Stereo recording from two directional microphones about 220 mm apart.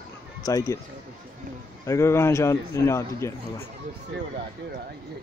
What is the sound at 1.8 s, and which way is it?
A man's voice, 15° left (ahead or behind).